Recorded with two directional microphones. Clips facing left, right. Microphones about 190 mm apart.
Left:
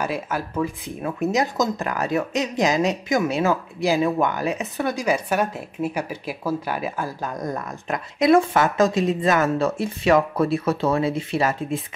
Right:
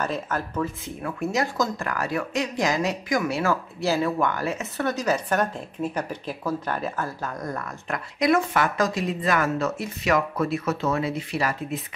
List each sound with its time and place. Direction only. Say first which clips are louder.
0.0 s speech: left 2 dB; 10° left (ahead or behind); by 11.8 s 25° left (ahead or behind)